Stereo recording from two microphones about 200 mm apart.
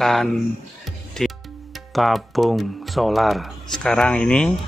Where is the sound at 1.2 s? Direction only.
Centre (ahead or behind).